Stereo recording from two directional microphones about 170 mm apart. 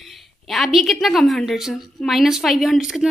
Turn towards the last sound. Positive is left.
turn(degrees=-5)  # may be behind; listen again after turning